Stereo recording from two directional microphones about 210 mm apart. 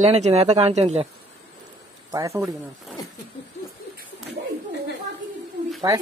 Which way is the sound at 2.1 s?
15° right (ahead or behind).